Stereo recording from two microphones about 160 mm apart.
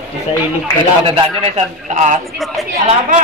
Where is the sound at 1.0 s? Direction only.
35° right (ahead or behind).